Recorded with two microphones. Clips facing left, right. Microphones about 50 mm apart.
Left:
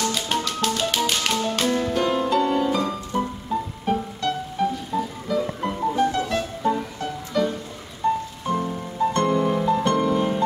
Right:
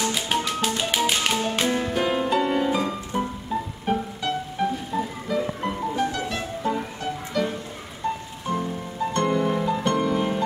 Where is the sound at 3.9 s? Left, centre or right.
Centre.